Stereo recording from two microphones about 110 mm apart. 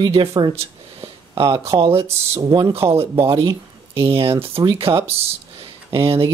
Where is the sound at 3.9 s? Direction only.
55° right (ahead or behind).